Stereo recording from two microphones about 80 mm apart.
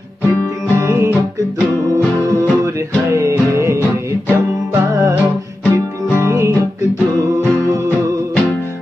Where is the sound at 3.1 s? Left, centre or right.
Right.